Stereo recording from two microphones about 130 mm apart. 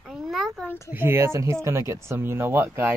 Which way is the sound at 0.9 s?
20° right (ahead or behind).